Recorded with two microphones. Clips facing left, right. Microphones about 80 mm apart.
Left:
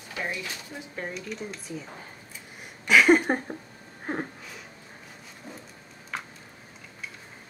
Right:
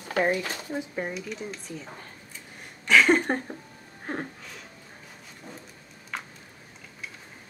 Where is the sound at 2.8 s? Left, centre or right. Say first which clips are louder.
Left 1 dB; centre.